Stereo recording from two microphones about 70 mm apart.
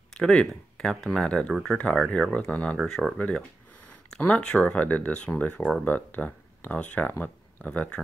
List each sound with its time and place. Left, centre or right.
0.1 s speech: centre
2.8 s speech: centre
3.2 s speech: centre